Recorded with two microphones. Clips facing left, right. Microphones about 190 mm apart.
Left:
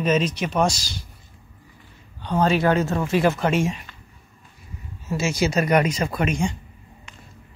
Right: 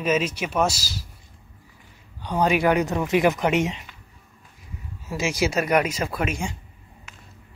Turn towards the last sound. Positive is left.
turn(degrees=-5)  # may be behind; listen again after turning